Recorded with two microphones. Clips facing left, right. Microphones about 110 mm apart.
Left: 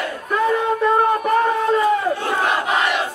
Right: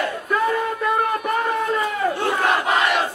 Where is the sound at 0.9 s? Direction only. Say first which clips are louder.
Left 4 dB; 30° left (ahead or behind).